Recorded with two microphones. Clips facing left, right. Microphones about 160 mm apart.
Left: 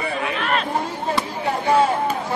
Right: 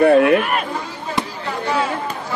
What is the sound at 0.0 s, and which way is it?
Chatter, 60° right (ahead or behind).